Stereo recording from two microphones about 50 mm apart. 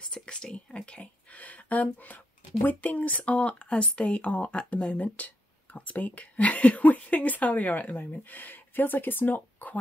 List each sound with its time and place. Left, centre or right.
0.0 s a sound: centre; by 2.1 s left
2.6 s speech: left
8.2 s speech: left